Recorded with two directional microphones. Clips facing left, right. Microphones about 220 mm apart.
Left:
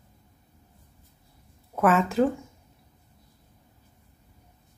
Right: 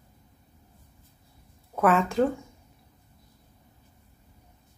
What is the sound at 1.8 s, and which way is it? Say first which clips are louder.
Speech: left 1 dB; centre (ahead or behind).